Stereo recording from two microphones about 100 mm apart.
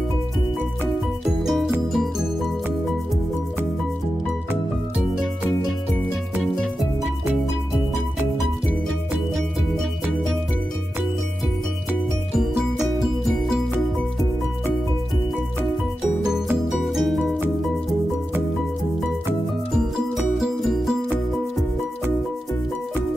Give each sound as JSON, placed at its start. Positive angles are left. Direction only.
{"t": 1.2, "sound": "music", "side_deg": 0}
{"t": 13.0, "sound": "music", "side_deg": 0}
{"t": 16.3, "sound": "music", "side_deg": -5}
{"t": 20.3, "sound": "music", "side_deg": 0}